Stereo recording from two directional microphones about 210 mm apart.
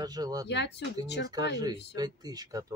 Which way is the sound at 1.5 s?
20° right (ahead or behind).